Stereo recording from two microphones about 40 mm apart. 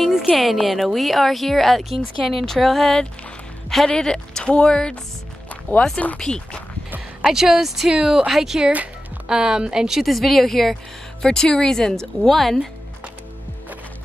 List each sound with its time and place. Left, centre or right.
0.4 s a woman's voice: centre
5.5 s music: left
6.1 s a woman's voice: centre
7.2 s speech: centre
7.9 s speech: centre
10.0 s speech: centre
11.2 s speech: centre